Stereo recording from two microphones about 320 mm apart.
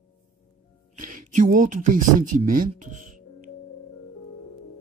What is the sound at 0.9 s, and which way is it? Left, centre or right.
Music, right.